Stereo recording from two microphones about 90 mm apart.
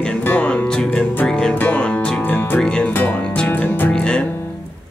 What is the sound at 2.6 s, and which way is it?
Music, 10° left (ahead or behind).